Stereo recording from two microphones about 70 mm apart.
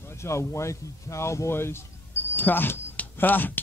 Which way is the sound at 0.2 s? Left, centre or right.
Left.